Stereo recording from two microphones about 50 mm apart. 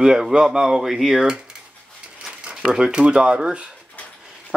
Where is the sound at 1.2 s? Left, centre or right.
Centre.